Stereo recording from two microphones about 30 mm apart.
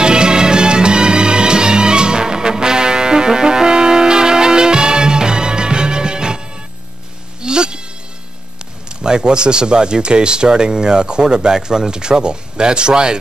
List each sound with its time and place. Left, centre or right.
0.0 s music: right
7.4 s music: right
9.0 s speech: right